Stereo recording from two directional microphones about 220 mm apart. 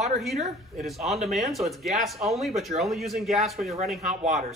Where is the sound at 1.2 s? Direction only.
Centre (ahead or behind).